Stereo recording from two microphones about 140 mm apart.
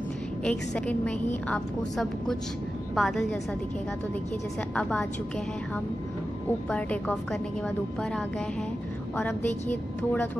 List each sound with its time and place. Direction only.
0.4 s a woman's voice: 10° left (ahead or behind)
4.7 s a woman's voice: 10° left (ahead or behind)
6.7 s a woman's voice: 10° left (ahead or behind)
9.7 s a woman's voice: 10° left (ahead or behind)